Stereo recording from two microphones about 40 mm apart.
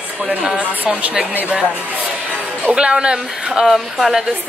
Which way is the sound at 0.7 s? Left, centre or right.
Right.